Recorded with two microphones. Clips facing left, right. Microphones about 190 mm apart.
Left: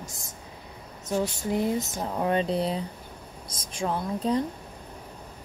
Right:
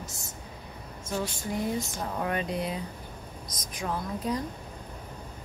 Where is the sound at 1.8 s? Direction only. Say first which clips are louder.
Left 4 dB; 25° left (ahead or behind).